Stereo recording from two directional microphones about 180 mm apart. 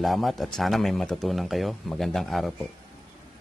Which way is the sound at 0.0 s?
Centre (ahead or behind).